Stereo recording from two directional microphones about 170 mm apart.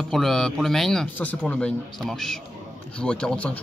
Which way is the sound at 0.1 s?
Centre (ahead or behind).